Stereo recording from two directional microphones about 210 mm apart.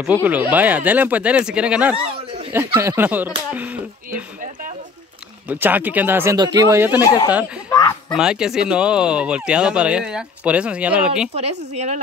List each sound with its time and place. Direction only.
0.0 s speech: 5° right (ahead or behind)
4.1 s a sound: 40° right (ahead or behind)
5.5 s speech: 10° right (ahead or behind)
7.0 s speech: 20° left (ahead or behind)
8.1 s speech: 5° right (ahead or behind)
11.3 s a woman's voice: 30° right (ahead or behind)